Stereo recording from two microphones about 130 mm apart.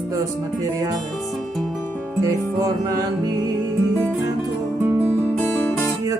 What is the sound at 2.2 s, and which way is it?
Music, 30° right (ahead or behind).